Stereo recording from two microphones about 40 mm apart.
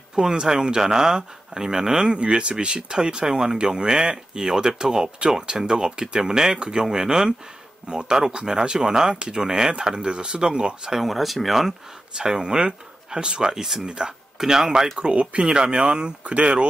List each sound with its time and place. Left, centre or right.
0.1 s speech: centre
7.9 s speech: right
8.5 s speech: centre
10.9 s speech: centre
12.2 s speech: right
15.0 s speech: right